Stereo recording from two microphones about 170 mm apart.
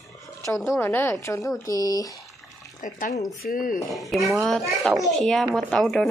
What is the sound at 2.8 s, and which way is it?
Speech, 50° left (ahead or behind).